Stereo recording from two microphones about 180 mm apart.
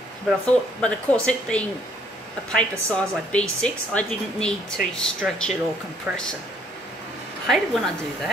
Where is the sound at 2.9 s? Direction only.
5° left (ahead or behind).